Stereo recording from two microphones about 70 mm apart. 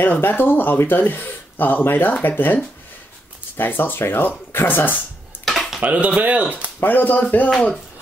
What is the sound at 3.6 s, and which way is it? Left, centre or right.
Speech, left.